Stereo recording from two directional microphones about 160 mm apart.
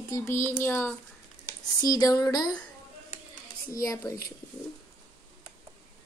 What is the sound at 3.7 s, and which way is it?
Speech, 20° left (ahead or behind).